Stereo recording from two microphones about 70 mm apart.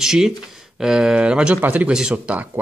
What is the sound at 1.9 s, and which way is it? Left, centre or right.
Speech, centre.